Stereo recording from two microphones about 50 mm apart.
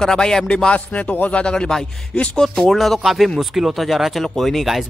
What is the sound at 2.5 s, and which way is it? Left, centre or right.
Speech, centre.